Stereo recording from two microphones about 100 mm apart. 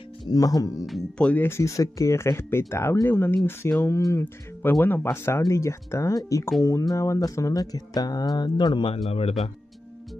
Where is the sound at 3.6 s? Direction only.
30° left (ahead or behind).